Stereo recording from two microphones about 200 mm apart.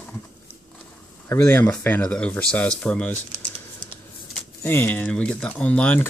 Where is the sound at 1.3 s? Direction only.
10° left (ahead or behind).